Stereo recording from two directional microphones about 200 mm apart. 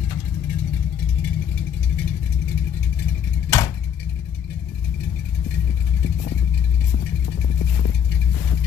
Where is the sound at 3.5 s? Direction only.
15° left (ahead or behind).